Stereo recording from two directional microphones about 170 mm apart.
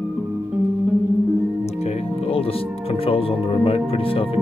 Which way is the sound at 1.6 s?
35° left (ahead or behind).